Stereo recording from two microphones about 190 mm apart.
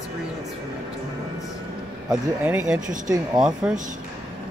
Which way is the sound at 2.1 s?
10° right (ahead or behind).